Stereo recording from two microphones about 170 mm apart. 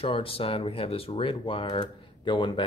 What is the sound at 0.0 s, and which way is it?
Speech, 35° left (ahead or behind).